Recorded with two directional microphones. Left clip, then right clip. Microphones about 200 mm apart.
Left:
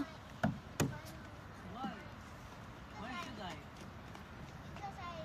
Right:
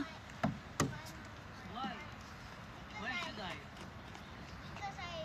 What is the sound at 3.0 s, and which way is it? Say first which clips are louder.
Vehicle: right 4 dB; 55° left (ahead or behind).